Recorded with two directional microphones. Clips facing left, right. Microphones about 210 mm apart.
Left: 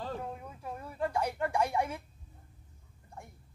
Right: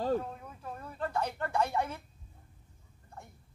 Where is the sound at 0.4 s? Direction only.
10° left (ahead or behind).